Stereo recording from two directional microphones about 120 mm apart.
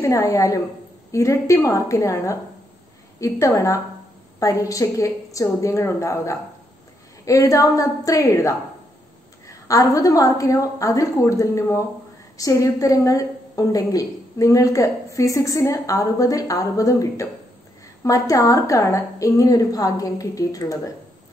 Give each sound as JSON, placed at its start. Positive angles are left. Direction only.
{"t": 0.0, "sound": "a woman's voice", "side_deg": 25}